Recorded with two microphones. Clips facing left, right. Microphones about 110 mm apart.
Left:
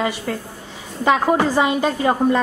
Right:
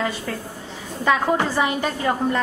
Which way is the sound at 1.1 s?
15° left (ahead or behind).